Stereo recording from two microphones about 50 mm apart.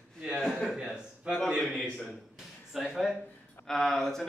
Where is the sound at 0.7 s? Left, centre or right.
Centre.